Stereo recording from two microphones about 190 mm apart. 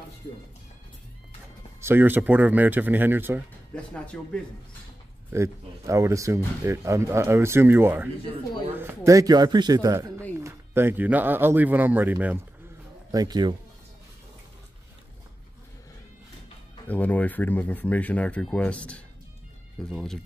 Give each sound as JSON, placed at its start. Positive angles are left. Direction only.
{"t": 1.8, "sound": "speech", "side_deg": -10}
{"t": 3.7, "sound": "speech", "side_deg": 5}
{"t": 5.3, "sound": "a man's voice", "side_deg": -15}
{"t": 13.1, "sound": "a man's voice", "side_deg": -20}
{"t": 16.8, "sound": "speech", "side_deg": 10}